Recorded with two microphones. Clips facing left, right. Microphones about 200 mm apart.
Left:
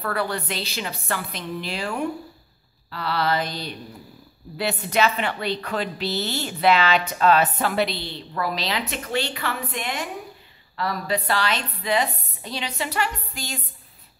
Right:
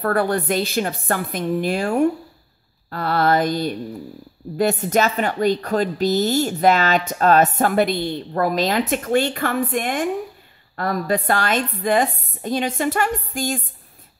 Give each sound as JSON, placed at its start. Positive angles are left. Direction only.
{"t": 0.0, "sound": "a woman's voice", "side_deg": -50}